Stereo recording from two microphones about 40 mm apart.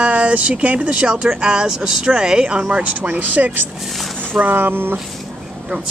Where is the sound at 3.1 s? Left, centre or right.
Right.